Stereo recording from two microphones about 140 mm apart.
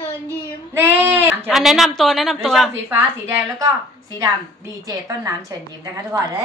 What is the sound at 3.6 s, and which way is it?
A woman's voice, 25° right (ahead or behind).